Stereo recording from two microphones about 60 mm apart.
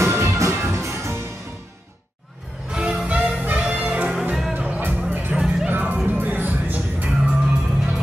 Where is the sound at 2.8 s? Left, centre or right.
Right.